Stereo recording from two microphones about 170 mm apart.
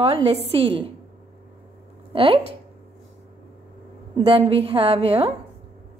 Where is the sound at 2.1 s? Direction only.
30° right (ahead or behind).